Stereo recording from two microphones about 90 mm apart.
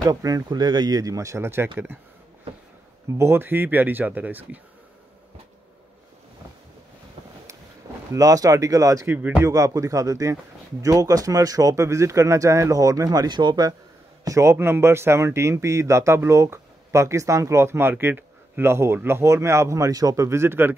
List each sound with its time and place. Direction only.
0.0 s speech: 45° right (ahead or behind); by 1.7 s 25° right (ahead or behind)
3.2 s speech: 25° right (ahead or behind)
8.1 s speech: 40° right (ahead or behind)
9.1 s speech: 20° right (ahead or behind)
9.4 s speech: 35° right (ahead or behind); by 13.7 s 55° right (ahead or behind)
14.2 s speech: 35° right (ahead or behind)
20.2 s speech: 30° right (ahead or behind)